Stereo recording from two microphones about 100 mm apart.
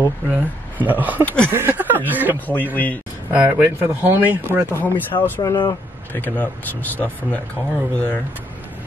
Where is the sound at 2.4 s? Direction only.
15° left (ahead or behind).